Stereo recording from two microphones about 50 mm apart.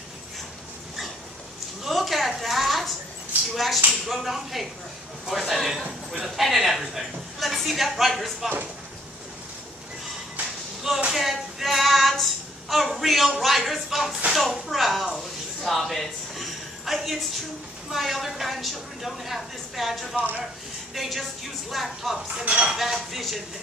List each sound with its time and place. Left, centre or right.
1.9 s a sound: centre
3.5 s a woman's voice: centre
11.1 s child singing: centre
14.3 s a woman's voice: centre
15.6 s a sound: centre
17.9 s a woman's voice: centre
22.3 s dishes: right
22.8 s a woman's voice: centre